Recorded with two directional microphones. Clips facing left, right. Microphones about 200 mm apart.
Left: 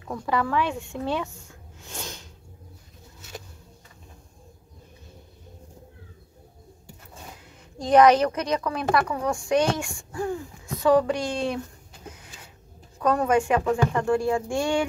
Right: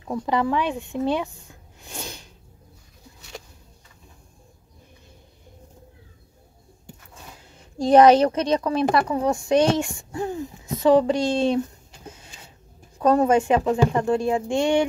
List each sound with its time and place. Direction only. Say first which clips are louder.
0.0 s speech: right 3 dB; 20° right (ahead or behind)
1.8 s a sound: right 2 dB; 15° right (ahead or behind)
7.5 s a woman's voice: right 3 dB; 30° right (ahead or behind)
13.0 s speech: right 4 dB; 25° right (ahead or behind)